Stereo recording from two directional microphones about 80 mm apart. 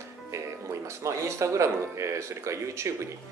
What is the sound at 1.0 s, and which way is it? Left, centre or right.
Speech, right.